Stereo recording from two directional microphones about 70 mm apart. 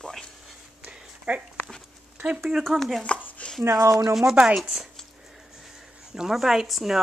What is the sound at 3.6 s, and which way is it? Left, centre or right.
Speech, right.